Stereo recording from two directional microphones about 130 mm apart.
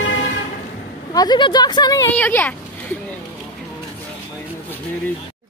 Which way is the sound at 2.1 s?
10° left (ahead or behind).